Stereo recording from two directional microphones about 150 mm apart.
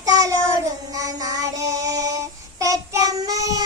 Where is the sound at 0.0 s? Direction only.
25° right (ahead or behind).